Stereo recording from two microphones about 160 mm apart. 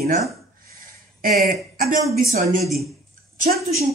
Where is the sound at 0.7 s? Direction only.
60° right (ahead or behind).